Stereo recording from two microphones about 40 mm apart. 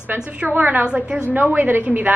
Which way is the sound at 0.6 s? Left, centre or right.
Right.